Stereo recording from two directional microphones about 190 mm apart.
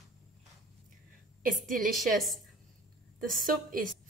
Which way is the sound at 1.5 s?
45° right (ahead or behind).